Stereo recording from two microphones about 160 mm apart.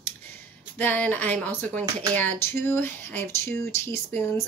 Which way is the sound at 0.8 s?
10° left (ahead or behind).